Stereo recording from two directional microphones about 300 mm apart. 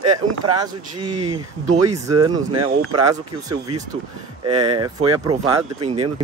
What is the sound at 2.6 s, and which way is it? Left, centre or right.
Speech, right.